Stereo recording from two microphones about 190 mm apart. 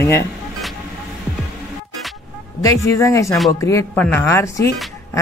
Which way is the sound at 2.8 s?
15° left (ahead or behind).